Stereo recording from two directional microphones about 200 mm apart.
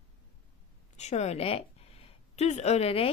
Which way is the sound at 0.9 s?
35° left (ahead or behind).